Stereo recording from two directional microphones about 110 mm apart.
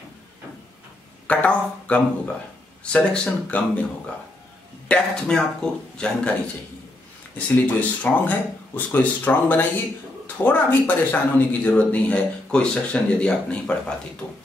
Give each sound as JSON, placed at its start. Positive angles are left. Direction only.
{"t": 1.2, "sound": "speech", "side_deg": 15}